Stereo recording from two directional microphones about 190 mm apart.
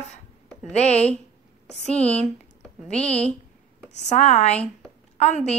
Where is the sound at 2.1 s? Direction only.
5° left (ahead or behind).